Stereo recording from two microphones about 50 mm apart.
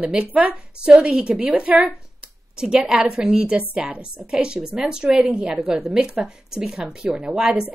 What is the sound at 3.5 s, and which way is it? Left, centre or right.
A woman's voice, right.